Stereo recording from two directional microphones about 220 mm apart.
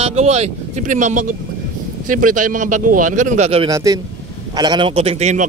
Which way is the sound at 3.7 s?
15° right (ahead or behind).